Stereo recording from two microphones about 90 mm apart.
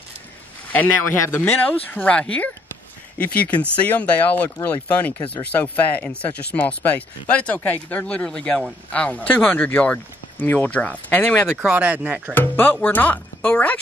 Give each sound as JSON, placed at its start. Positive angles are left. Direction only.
{"t": 0.7, "sound": "a man's voice", "side_deg": 15}
{"t": 1.1, "sound": "speech", "side_deg": 30}
{"t": 1.4, "sound": "speech", "side_deg": 15}
{"t": 11.6, "sound": "speech", "side_deg": -20}
{"t": 12.4, "sound": "speech", "side_deg": 20}